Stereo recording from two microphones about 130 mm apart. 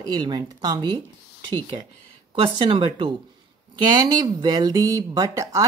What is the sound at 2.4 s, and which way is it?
Speech, 40° right (ahead or behind).